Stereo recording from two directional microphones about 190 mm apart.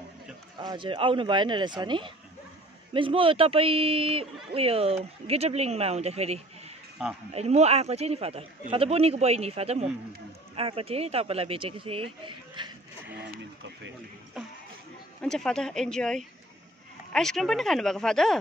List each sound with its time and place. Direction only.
0.6 s a man's voice: 25° right (ahead or behind)
7.0 s speech: 5° right (ahead or behind)
7.3 s a man's voice: 35° right (ahead or behind)
14.3 s speech: 5° right (ahead or behind)